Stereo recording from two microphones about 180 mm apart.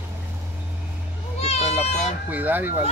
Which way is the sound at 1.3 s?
35° left (ahead or behind).